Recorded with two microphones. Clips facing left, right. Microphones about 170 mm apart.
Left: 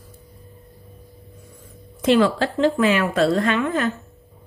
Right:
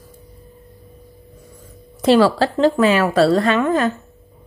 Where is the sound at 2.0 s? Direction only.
35° right (ahead or behind).